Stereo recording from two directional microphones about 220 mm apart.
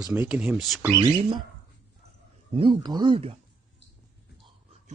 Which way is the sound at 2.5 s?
25° right (ahead or behind).